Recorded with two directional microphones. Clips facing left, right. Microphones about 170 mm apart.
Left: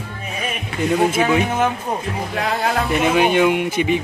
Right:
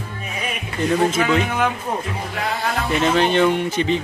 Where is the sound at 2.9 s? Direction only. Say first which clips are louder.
Even; 10° left (ahead or behind).